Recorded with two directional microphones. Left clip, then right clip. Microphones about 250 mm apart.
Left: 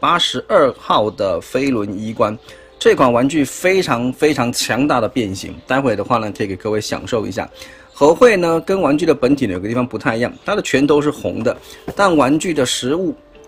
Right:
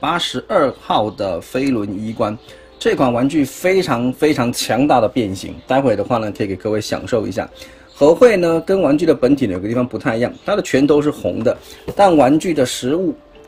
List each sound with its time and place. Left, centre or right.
0.0 s speech: centre